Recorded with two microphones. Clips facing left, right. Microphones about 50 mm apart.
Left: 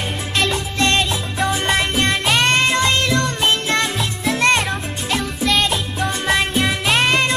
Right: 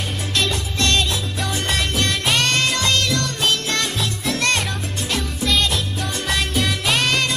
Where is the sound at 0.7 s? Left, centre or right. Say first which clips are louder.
Left 2 dB; left.